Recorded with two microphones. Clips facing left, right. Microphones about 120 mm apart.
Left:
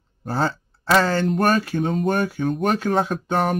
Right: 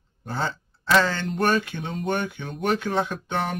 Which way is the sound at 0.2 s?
40° left (ahead or behind).